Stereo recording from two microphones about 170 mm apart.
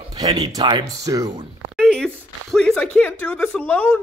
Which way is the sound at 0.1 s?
20° right (ahead or behind).